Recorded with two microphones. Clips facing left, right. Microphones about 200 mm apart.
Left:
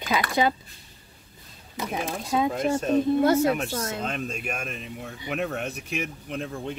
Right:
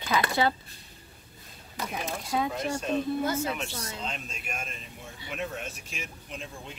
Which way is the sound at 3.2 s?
65° left (ahead or behind).